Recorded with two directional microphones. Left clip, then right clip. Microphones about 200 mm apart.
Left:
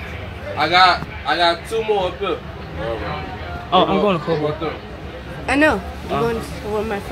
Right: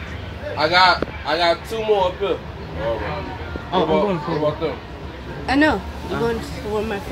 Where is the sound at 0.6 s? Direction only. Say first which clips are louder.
Left 1 dB; 40° right (ahead or behind).